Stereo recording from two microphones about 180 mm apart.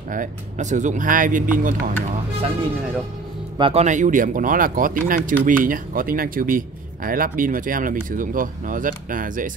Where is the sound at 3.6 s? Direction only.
35° right (ahead or behind); by 9.5 s 50° right (ahead or behind).